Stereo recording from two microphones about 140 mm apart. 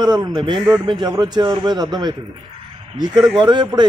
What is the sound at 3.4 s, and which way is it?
Speech, 30° right (ahead or behind).